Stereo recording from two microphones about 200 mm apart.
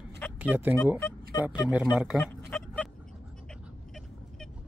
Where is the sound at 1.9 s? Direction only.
Centre (ahead or behind).